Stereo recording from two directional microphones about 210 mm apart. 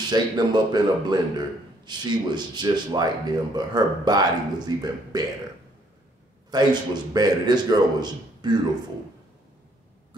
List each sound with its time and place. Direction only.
0.1 s speech: 20° right (ahead or behind)
6.5 s speech: 20° right (ahead or behind)